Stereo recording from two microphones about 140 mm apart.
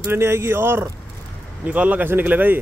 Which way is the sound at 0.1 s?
15° right (ahead or behind).